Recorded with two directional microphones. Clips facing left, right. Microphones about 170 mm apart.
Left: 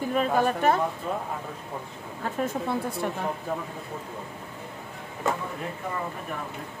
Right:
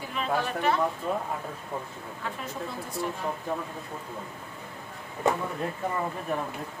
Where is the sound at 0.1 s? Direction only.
45° left (ahead or behind).